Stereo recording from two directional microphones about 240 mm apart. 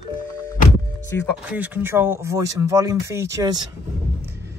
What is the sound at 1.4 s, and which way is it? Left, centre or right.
Speech, centre.